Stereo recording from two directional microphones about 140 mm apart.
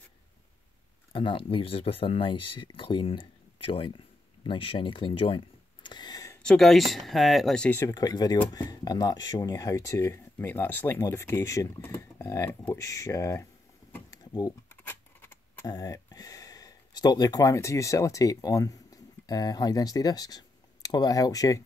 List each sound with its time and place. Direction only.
1.1 s speech: 40° left (ahead or behind)
6.4 s speech: 5° left (ahead or behind)
7.8 s speech: 25° left (ahead or behind)
14.1 s typing: 25° left (ahead or behind)
14.9 s a sound: 15° left (ahead or behind)
15.6 s speech: 25° left (ahead or behind)